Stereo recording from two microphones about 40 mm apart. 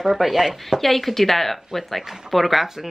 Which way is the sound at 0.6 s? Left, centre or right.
Centre.